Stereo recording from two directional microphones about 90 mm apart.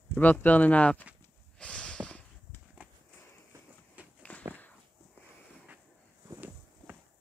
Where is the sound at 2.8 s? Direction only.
15° right (ahead or behind).